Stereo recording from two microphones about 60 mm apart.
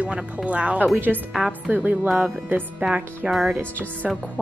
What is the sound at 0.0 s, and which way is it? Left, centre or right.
Speech, right.